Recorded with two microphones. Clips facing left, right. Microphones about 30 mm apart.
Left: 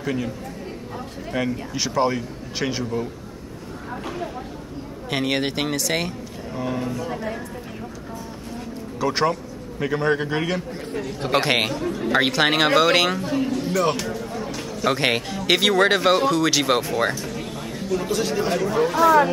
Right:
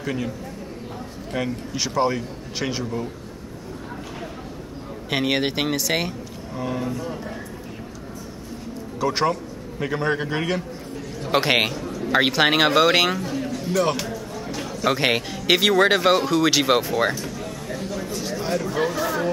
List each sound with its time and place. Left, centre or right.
0.0 s speech: centre
1.3 s speech: centre
5.1 s speech: centre
9.0 s a man's voice: centre
10.9 s speech: left
11.3 s speech: centre
11.8 s speech: left
12.1 s speech: centre
13.2 s a man's voice: left
13.7 s speech: centre
14.0 s music: centre
14.5 s speech: centre
17.9 s speech: left
18.5 s speech: left